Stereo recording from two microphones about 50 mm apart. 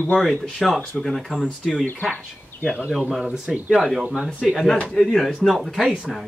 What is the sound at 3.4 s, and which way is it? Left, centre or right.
Speech, right.